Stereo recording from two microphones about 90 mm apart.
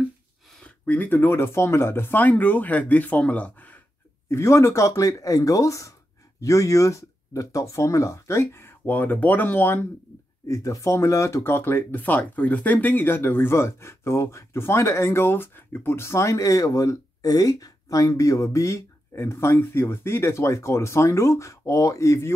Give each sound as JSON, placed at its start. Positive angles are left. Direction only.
{"t": 0.6, "sound": "speech", "side_deg": 15}
{"t": 4.3, "sound": "speech", "side_deg": 30}
{"t": 10.4, "sound": "speech", "side_deg": 40}